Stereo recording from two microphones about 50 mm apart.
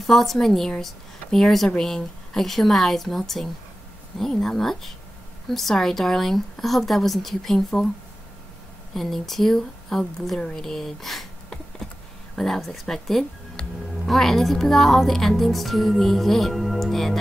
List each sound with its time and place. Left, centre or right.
0.0 s speech: centre
8.9 s speech: centre
12.4 s speech: centre
13.6 s speech: centre
14.0 s speech: centre